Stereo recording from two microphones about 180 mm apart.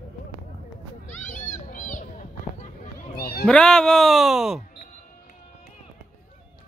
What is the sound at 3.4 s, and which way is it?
Speech, 5° left (ahead or behind).